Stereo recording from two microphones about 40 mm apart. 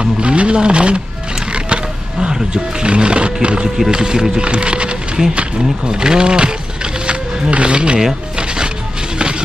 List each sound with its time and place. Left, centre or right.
0.0 s a sound: right
1.5 s music: right
3.6 s speech: centre
3.9 s speech: centre
5.9 s a sound: centre
7.5 s speech: right